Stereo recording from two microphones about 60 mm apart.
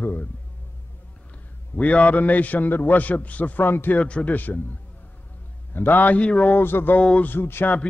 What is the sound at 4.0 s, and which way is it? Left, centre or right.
Speech, left.